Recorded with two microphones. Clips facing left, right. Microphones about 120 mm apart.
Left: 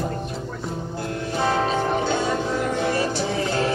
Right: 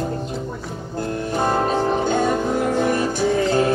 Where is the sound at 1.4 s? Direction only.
50° right (ahead or behind).